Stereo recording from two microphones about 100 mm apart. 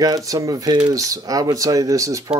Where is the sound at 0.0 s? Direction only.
35° right (ahead or behind).